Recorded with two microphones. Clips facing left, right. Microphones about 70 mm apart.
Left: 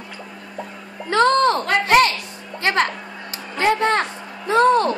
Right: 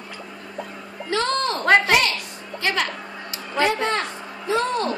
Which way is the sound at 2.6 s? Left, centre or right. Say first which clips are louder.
Left 5 dB; left.